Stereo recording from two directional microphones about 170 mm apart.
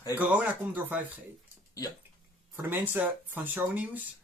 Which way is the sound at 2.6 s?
10° right (ahead or behind).